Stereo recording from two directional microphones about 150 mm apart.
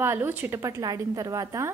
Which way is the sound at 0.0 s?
15° right (ahead or behind).